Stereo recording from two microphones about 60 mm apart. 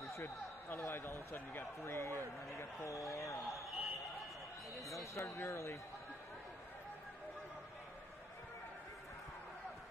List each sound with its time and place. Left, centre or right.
0.7 s speech: left
3.5 s a sound: centre
4.7 s speech: centre
5.1 s speech: left